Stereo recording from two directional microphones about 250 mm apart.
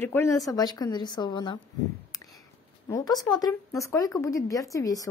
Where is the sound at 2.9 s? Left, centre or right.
Centre.